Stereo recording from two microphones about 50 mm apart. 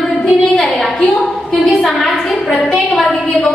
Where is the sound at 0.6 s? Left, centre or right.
Centre.